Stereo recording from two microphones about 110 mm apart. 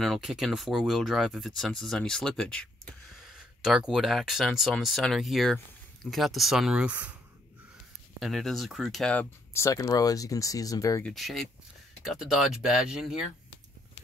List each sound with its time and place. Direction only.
0.0 s speech: centre (ahead or behind)
3.3 s speech: 5° right (ahead or behind)
8.2 s speech: centre (ahead or behind)
9.1 s speech: 20° left (ahead or behind)
11.1 s speech: centre (ahead or behind)